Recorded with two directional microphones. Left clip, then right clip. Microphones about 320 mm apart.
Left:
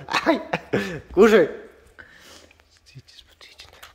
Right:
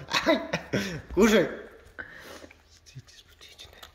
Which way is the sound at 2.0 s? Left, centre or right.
Right.